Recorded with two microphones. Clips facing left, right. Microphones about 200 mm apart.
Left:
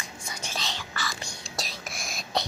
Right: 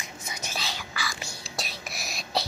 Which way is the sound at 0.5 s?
10° right (ahead or behind).